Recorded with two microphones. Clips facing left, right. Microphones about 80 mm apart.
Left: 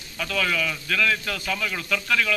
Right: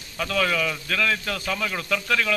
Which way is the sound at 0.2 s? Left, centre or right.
Right.